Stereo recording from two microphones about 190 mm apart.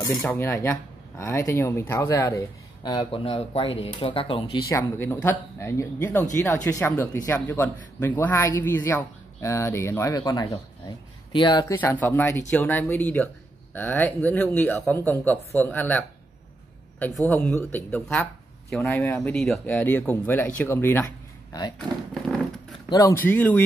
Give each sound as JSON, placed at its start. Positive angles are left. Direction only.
{"t": 0.1, "sound": "speech", "side_deg": 0}
{"t": 0.4, "sound": "speech", "side_deg": 10}
{"t": 11.7, "sound": "speech", "side_deg": 10}
{"t": 17.3, "sound": "speech", "side_deg": 10}
{"t": 21.7, "sound": "speech", "side_deg": 0}
{"t": 22.8, "sound": "speech", "side_deg": 15}